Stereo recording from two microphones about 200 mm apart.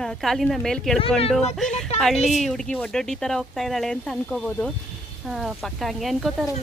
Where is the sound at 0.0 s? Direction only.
Centre (ahead or behind).